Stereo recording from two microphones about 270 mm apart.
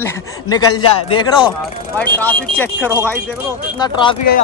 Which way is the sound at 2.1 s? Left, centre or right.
Centre.